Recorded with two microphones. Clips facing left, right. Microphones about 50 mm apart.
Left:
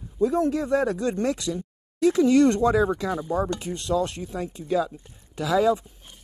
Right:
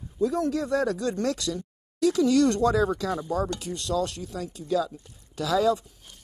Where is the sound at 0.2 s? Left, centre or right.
Left.